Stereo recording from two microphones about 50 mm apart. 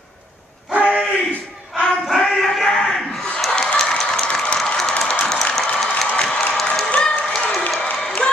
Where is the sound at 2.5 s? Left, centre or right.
Centre.